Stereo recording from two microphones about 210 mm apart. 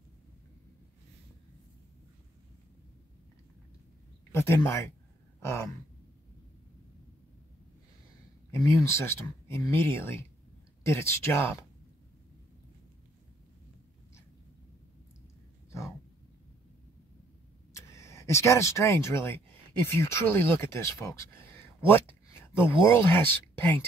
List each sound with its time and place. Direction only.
4.3 s speech: 10° left (ahead or behind)
5.4 s a sound: 10° left (ahead or behind)
8.5 s speech: 15° left (ahead or behind)
17.7 s speech: 15° left (ahead or behind)